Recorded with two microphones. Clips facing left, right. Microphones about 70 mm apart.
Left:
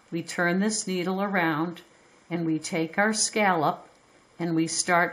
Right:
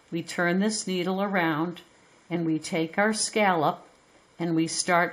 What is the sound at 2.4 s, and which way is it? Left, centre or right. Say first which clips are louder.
Speech: even; centre.